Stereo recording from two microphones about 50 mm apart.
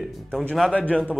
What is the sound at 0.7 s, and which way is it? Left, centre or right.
Speech, left.